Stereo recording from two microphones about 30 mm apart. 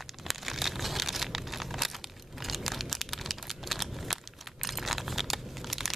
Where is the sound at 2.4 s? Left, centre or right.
Centre.